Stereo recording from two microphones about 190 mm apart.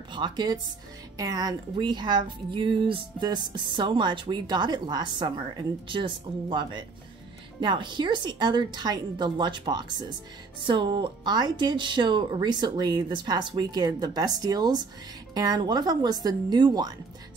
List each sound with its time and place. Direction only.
0.1 s a woman's voice: 25° right (ahead or behind)